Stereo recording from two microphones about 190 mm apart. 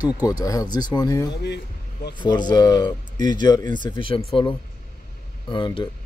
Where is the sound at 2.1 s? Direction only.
25° left (ahead or behind).